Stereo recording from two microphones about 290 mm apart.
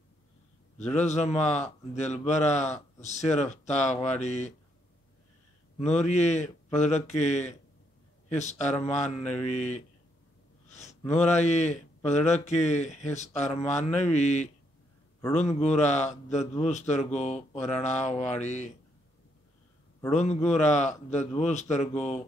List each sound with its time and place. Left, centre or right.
1.0 s a man's voice: left
5.8 s a man's voice: left
10.7 s a sound: left
11.2 s a man's voice: left
17.6 s mantra: centre
17.8 s a man's voice: left
18.1 s speech: centre
18.4 s a man's voice: left
20.1 s a man's voice: left